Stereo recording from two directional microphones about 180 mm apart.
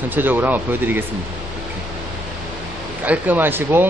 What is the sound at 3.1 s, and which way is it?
Speech, 10° right (ahead or behind).